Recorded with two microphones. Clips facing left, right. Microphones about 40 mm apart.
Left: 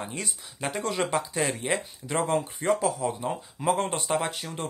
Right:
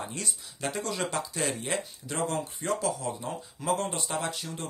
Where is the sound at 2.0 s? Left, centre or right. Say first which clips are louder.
Left 5 dB; left.